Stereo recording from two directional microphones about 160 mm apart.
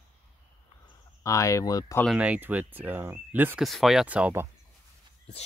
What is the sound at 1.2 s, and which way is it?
Speech, 20° left (ahead or behind).